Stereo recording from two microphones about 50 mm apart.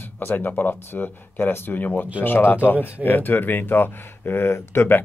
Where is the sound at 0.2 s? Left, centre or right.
Left.